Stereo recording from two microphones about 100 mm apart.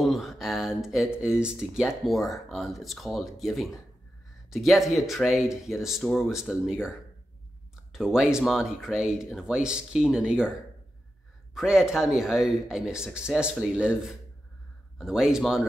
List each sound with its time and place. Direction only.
0.0 s speech: centre (ahead or behind)
7.9 s speech: 5° right (ahead or behind)
11.5 s speech: 5° right (ahead or behind)